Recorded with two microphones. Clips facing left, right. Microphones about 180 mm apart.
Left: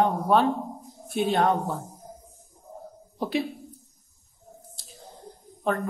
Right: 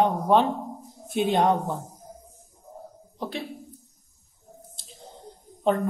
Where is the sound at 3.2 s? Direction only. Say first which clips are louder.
Left 5 dB; 10° left (ahead or behind).